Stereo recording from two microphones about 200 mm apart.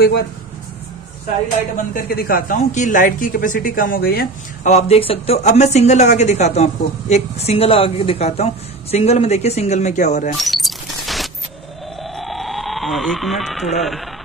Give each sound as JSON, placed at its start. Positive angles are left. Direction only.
{"t": 2.0, "sound": "speech", "side_deg": 50}
{"t": 4.6, "sound": "speech", "side_deg": 30}
{"t": 10.3, "sound": "coin", "side_deg": 0}
{"t": 12.0, "sound": "a sound", "side_deg": 0}
{"t": 13.7, "sound": "speech", "side_deg": 0}